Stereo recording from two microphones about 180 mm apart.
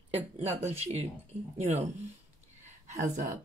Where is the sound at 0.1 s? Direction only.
35° right (ahead or behind).